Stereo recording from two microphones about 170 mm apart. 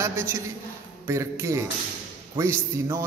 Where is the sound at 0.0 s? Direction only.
15° right (ahead or behind).